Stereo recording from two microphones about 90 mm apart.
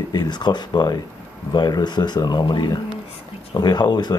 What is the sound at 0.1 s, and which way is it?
Speech, 50° left (ahead or behind).